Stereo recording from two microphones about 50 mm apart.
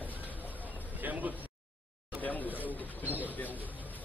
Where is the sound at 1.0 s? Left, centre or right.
Right.